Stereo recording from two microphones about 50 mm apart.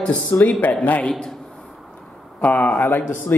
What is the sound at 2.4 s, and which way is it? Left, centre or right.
Speech, left.